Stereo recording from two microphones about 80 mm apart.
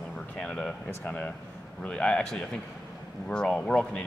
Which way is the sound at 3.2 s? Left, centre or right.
Centre.